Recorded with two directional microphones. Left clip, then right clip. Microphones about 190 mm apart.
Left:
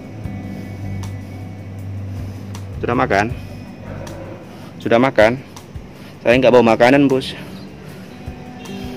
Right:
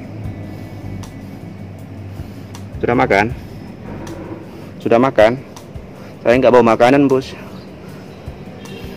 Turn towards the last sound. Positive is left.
turn(degrees=15)  # may be behind; listen again after turning